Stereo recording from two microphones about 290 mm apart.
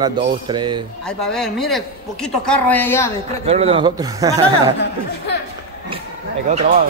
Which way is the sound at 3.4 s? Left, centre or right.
Centre.